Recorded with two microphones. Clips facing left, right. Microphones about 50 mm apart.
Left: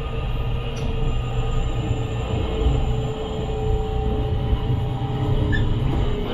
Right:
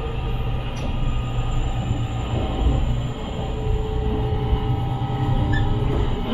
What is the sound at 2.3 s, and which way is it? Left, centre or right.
Music, centre.